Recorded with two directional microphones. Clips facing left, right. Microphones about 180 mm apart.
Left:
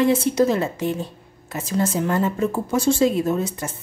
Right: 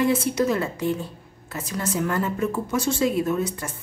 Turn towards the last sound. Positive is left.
turn(degrees=25)  # may be behind; listen again after turning